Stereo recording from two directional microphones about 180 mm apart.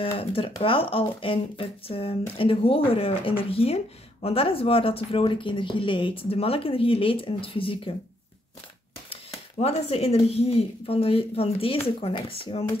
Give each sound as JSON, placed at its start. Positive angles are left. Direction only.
{"t": 0.2, "sound": "speech", "side_deg": 30}
{"t": 9.1, "sound": "speech", "side_deg": 35}